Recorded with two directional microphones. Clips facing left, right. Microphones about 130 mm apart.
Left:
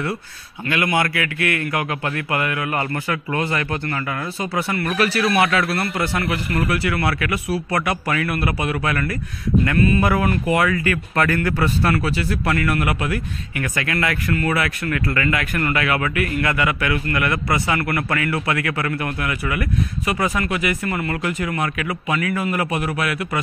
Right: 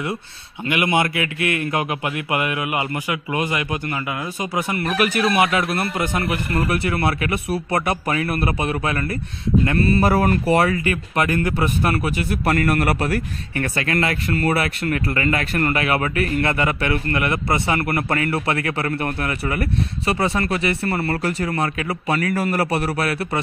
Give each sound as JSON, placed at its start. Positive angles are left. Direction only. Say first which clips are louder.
{"t": 0.7, "sound": "a man's voice", "louder": "right 1 dB", "side_deg": -20}
{"t": 12.4, "sound": "a man's voice", "louder": "right 3 dB", "side_deg": -40}